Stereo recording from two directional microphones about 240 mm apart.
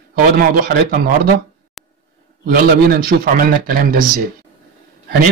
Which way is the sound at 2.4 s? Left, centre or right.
Right.